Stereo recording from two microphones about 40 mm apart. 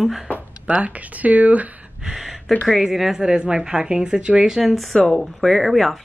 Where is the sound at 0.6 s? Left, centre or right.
Right.